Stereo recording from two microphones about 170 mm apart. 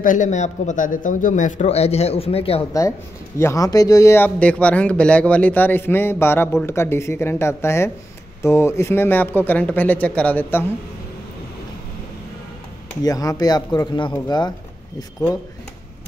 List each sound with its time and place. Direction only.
0.0 s a man's voice: 50° left (ahead or behind)
3.3 s speech: 20° left (ahead or behind)
13.0 s speech: 20° left (ahead or behind)